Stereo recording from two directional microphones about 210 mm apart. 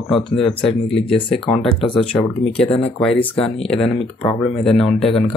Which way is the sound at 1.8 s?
25° left (ahead or behind).